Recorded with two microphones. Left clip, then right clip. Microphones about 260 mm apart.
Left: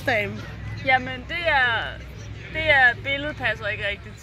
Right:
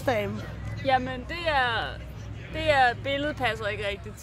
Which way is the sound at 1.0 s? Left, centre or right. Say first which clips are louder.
Left 4 dB; right.